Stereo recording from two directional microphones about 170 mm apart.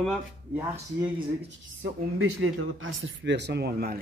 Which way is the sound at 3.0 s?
90° right.